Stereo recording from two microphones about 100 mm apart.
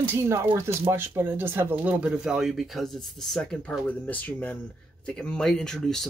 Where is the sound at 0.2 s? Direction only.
30° right (ahead or behind).